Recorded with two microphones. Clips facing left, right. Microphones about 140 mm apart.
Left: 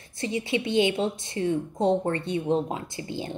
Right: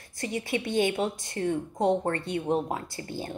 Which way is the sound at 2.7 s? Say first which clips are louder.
Left 1 dB; 20° left (ahead or behind).